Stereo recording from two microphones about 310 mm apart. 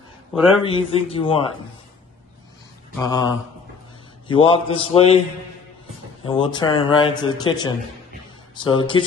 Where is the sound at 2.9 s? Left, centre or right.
Centre.